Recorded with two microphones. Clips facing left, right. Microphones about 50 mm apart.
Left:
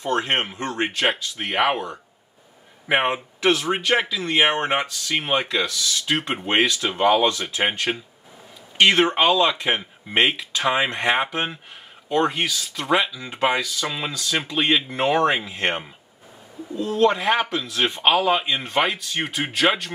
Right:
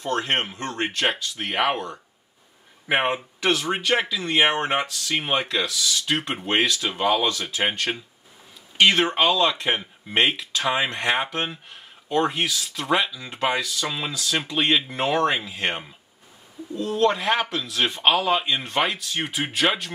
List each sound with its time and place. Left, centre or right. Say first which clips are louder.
0.0 s speech: left 2 dB; left
9.5 s speech: left 2 dB; centre
12.1 s speech: left 1 dB; centre
13.2 s speech: left 3 dB; centre
15.1 s speech: left 1 dB; centre
15.5 s speech: left 3 dB; left
17.0 s speech: left 2 dB; centre
18.0 s speech: left 2 dB; centre